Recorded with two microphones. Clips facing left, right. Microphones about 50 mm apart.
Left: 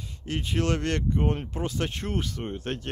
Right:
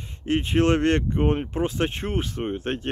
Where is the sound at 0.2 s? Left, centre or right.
Right.